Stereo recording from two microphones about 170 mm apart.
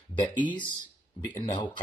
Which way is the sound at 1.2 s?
25° left (ahead or behind).